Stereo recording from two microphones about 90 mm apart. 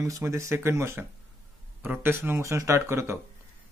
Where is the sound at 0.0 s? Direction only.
35° right (ahead or behind).